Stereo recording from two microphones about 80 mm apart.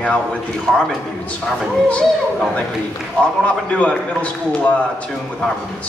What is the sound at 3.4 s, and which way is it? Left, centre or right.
Speech, centre.